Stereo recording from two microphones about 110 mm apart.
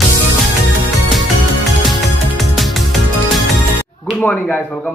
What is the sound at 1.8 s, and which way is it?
Music, centre (ahead or behind).